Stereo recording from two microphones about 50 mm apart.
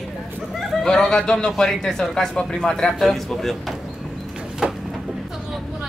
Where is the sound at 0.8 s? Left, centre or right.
Centre.